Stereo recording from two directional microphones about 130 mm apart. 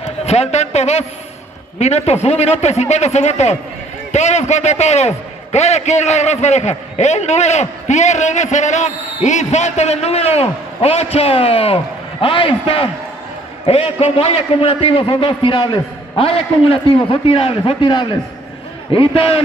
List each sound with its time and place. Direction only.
0.0 s a man's voice: 55° left (ahead or behind)